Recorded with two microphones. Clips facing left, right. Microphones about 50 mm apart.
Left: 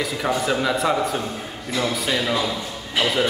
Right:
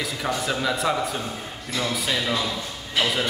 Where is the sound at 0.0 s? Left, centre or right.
Centre.